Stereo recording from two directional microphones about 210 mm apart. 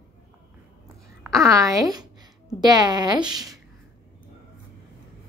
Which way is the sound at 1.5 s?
15° right (ahead or behind).